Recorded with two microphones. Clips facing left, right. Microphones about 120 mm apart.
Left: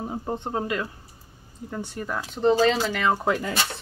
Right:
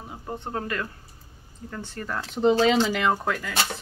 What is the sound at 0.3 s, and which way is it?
Speech, 20° left (ahead or behind).